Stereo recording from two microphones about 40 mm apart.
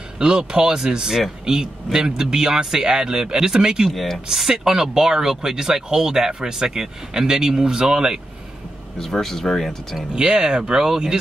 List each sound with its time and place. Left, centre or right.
0.2 s speech: centre
3.9 s speech: centre
4.3 s speech: centre
8.9 s speech: centre
10.7 s speech: centre